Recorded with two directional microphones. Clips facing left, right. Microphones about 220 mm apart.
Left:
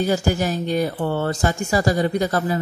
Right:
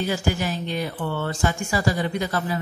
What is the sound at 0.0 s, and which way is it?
A woman's voice, 45° left (ahead or behind).